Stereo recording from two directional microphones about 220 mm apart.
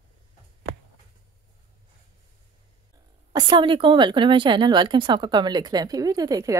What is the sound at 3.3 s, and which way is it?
Speech, 20° right (ahead or behind).